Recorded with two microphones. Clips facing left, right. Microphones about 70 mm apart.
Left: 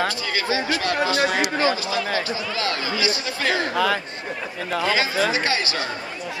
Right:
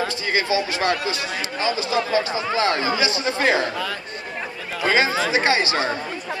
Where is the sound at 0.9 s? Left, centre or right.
Left.